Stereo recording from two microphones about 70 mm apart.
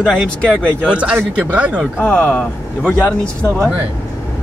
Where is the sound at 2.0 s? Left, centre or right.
Left.